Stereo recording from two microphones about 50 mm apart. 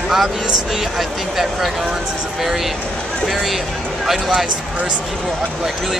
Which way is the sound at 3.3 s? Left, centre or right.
Centre.